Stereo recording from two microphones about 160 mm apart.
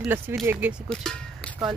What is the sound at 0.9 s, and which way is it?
Speech, 5° left (ahead or behind).